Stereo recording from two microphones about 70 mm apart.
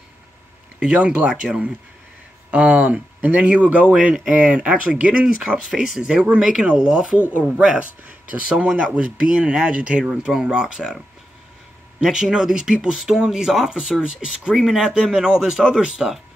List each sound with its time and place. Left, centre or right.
0.7 s speech: centre
12.0 s speech: centre